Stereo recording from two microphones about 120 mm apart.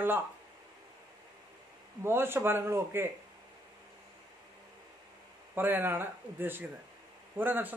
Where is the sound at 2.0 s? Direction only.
20° right (ahead or behind).